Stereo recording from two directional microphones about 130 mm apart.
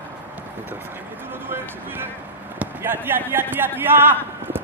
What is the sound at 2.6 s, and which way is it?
Speech, 15° right (ahead or behind).